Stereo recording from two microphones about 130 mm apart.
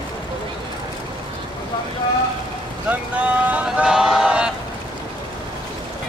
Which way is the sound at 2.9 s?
10° right (ahead or behind).